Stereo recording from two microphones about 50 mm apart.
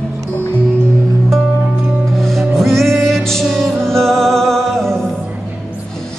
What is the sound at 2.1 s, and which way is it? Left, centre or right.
Music, centre.